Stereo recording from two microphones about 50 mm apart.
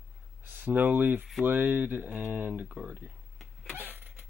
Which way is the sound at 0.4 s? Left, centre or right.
Right.